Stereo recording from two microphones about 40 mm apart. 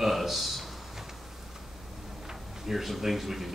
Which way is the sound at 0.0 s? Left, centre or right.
Centre.